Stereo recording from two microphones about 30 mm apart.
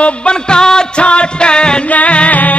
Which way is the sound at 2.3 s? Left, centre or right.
Left.